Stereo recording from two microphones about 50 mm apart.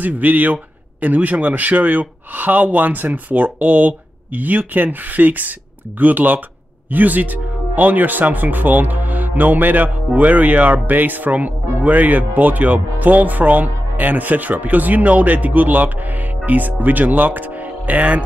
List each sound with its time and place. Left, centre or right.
0.0 s speech: right